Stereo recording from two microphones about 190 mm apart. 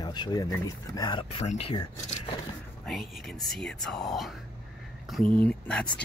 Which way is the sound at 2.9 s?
Centre (ahead or behind).